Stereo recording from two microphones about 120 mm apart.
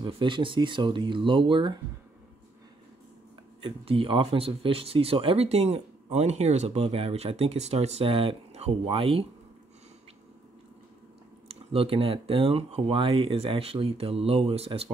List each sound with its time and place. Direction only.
0.0 s speech: 45° right (ahead or behind)
3.6 s speech: 50° right (ahead or behind)
11.4 s speech: 50° right (ahead or behind)